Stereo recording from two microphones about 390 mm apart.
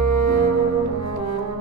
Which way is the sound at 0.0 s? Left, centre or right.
Right.